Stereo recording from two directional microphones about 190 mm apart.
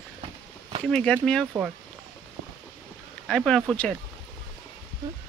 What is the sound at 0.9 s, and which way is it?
Speech, 5° left (ahead or behind).